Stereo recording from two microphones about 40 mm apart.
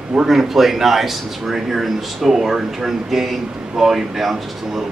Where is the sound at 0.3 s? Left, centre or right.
Centre.